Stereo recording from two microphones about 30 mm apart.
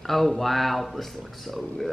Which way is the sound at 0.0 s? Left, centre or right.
Centre.